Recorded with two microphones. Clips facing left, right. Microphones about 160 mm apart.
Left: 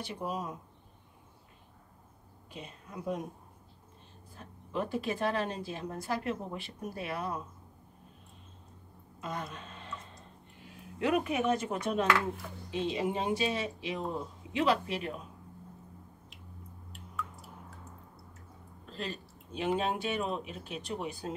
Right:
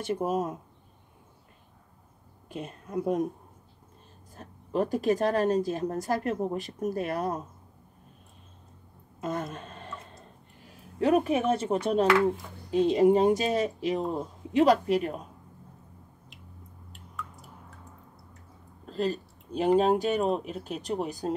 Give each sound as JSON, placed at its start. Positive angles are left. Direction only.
{"t": 0.0, "sound": "a woman's voice", "side_deg": -45}
{"t": 2.5, "sound": "a woman's voice", "side_deg": -50}
{"t": 4.4, "sound": "a woman's voice", "side_deg": -40}
{"t": 9.2, "sound": "a woman's voice", "side_deg": -45}
{"t": 11.0, "sound": "speech", "side_deg": -35}
{"t": 12.7, "sound": "a woman's voice", "side_deg": -45}
{"t": 16.9, "sound": "drip", "side_deg": 0}
{"t": 18.9, "sound": "a sound", "side_deg": -40}
{"t": 19.8, "sound": "speech", "side_deg": -40}